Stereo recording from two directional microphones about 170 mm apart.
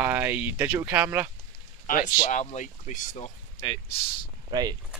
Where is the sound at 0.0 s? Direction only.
10° right (ahead or behind).